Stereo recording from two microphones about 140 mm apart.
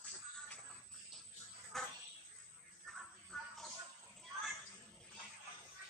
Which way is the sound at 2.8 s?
Centre (ahead or behind).